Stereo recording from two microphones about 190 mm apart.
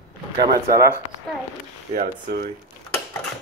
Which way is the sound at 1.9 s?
50° right (ahead or behind).